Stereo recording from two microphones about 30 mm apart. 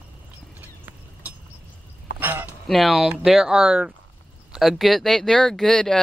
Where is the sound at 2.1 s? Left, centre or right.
Right.